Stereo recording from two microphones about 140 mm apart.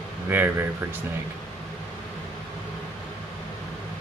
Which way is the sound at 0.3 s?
15° right (ahead or behind).